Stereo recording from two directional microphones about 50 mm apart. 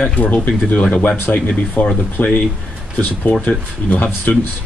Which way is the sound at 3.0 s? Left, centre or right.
Left.